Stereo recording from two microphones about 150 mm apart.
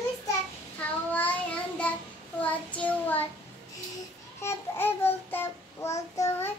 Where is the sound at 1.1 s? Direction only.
10° left (ahead or behind).